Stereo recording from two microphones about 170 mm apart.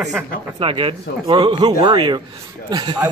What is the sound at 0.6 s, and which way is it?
Speech, 30° right (ahead or behind).